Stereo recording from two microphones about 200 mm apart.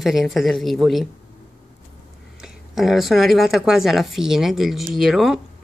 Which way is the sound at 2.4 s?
Centre (ahead or behind).